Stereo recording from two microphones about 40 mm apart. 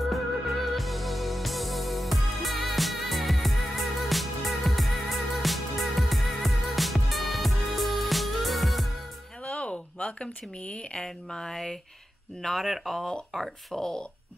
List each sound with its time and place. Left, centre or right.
0.0 s music: centre
9.4 s a sound: left
11.0 s speech: centre
13.7 s speech: centre